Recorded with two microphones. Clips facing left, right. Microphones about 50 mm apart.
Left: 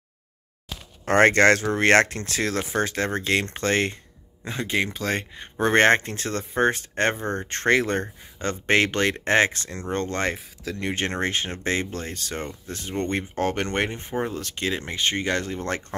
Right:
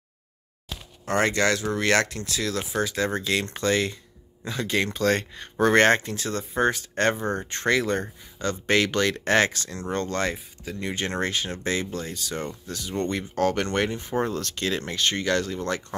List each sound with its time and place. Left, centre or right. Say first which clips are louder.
1.0 s speech: left 6 dB; left
4.5 s speech: even; left
10.3 s speech: left 2 dB; left
10.9 s speech: left 1 dB; left
12.4 s speech: even; left
14.2 s speech: even; centre; by 16.0 s left